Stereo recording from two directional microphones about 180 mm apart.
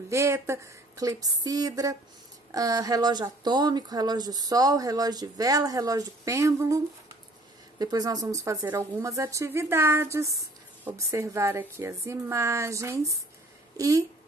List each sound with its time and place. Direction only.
0.1 s speech: 15° right (ahead or behind)
7.8 s speech: 20° right (ahead or behind)